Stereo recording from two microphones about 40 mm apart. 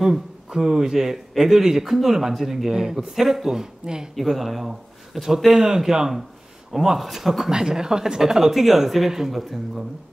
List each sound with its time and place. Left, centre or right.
0.0 s a man's voice: centre
4.1 s a man's voice: centre